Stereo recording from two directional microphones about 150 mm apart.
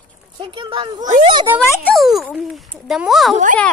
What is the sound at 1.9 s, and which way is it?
A child's voice, centre (ahead or behind).